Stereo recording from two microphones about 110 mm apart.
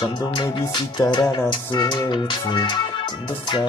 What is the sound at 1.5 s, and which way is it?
Music, 45° left (ahead or behind).